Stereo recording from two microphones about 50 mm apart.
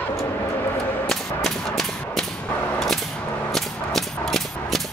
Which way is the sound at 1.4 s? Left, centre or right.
Centre.